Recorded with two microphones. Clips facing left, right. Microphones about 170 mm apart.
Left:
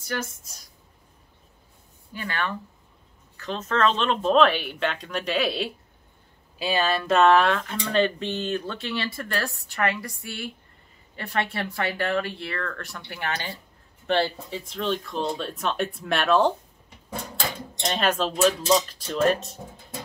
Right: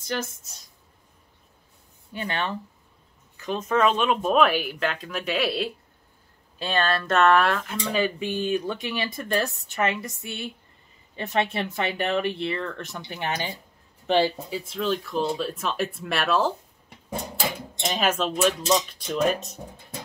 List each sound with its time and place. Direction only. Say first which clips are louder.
0.0 s speech: right 1 dB; 25° right (ahead or behind)
2.1 s speech: right 1 dB; 20° right (ahead or behind); by 16.5 s centre (ahead or behind)
17.7 s speech: left 1 dB; 5° right (ahead or behind)
18.8 s speech: even; 15° right (ahead or behind)
19.2 s speech: left 3 dB; centre (ahead or behind)